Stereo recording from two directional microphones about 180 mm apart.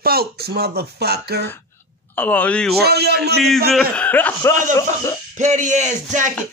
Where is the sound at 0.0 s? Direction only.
60° right (ahead or behind).